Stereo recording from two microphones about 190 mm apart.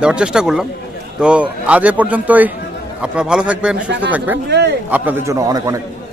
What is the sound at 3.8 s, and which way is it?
Speech, 70° right (ahead or behind).